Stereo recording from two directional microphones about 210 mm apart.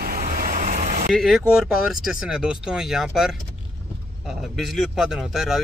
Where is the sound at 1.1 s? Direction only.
Centre (ahead or behind).